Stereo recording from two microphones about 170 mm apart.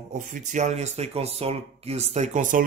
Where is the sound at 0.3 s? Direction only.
45° right (ahead or behind).